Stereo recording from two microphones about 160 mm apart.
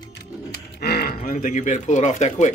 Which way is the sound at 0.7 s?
80° left.